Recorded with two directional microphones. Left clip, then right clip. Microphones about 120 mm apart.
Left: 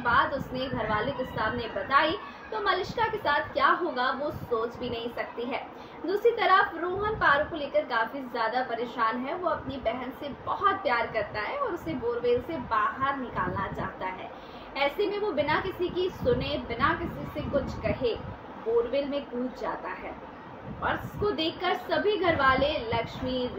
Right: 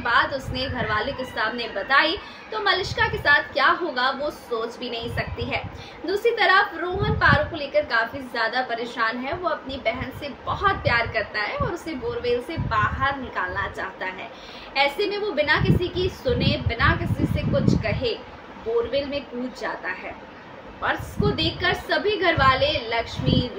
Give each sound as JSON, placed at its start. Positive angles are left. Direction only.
{"t": 0.0, "sound": "a woman's voice", "side_deg": -5}
{"t": 20.8, "sound": "a woman's voice", "side_deg": -5}